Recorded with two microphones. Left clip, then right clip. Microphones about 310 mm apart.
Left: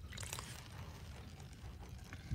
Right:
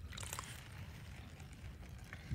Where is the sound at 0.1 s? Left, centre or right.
Centre.